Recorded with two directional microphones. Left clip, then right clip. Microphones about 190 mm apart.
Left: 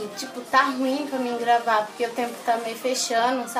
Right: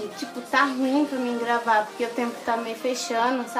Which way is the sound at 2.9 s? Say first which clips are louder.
Left 2 dB; 15° right (ahead or behind).